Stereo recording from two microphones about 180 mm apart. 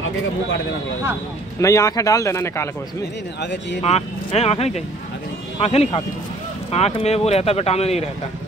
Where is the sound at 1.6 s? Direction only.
15° left (ahead or behind).